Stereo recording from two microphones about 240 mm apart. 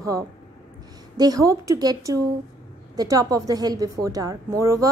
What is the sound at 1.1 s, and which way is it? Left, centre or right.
A woman's voice, centre.